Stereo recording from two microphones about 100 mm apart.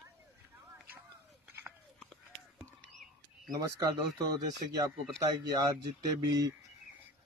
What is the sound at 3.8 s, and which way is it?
Speech, 40° right (ahead or behind).